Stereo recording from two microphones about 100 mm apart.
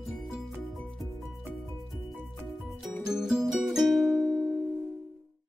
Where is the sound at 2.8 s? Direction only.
5° right (ahead or behind).